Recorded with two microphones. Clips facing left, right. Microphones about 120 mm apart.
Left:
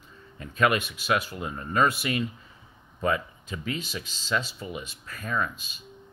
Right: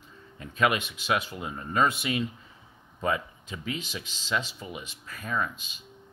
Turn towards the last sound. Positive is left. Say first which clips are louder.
# left 1 dB
turn(degrees=-15)  # may be behind; listen again after turning